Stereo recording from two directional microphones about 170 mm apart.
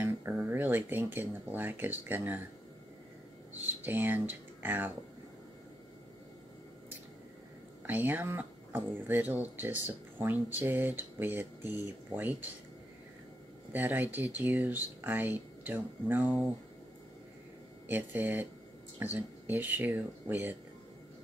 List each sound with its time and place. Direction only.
0.0 s speech: 10° right (ahead or behind)
3.5 s speech: 10° right (ahead or behind)
7.8 s speech: 10° right (ahead or behind)
13.7 s speech: 10° right (ahead or behind)
17.8 s speech: 10° right (ahead or behind)